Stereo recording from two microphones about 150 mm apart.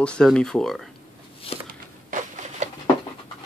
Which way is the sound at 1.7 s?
60° right (ahead or behind).